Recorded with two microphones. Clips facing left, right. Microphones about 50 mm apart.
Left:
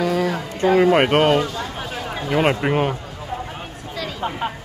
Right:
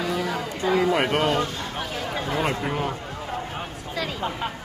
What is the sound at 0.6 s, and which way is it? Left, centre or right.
Speech, left.